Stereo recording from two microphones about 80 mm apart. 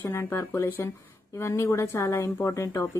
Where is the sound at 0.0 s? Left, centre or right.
Left.